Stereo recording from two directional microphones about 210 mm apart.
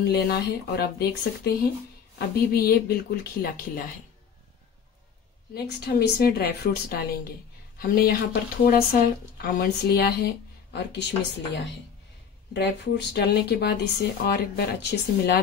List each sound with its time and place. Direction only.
0.0 s speech: 50° left (ahead or behind)
5.5 s speech: 50° left (ahead or behind)
12.5 s speech: 55° left (ahead or behind)